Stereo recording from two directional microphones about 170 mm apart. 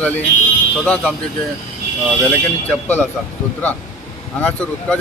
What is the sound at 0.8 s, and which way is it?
Speech, 5° left (ahead or behind).